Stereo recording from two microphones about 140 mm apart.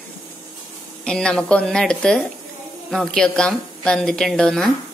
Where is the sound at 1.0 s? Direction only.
5° left (ahead or behind).